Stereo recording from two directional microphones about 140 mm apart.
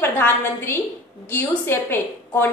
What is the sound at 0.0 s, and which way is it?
A woman's voice, 15° left (ahead or behind).